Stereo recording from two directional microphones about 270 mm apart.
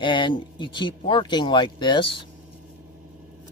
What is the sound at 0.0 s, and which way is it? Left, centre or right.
Speech, centre.